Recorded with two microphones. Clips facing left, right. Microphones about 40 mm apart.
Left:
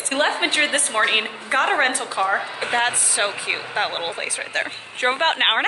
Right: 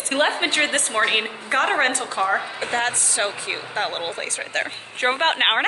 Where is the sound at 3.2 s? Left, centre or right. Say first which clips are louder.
Left 3 dB; left.